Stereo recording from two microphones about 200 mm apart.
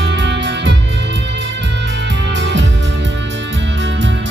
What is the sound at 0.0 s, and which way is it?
Music, 60° right (ahead or behind).